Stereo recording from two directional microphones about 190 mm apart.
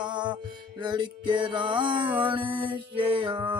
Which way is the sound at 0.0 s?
25° right (ahead or behind).